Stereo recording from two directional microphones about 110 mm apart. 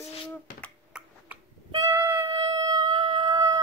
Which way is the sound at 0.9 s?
10° right (ahead or behind).